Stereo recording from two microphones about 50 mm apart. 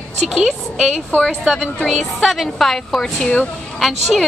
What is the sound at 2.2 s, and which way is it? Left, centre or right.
A woman's voice, centre.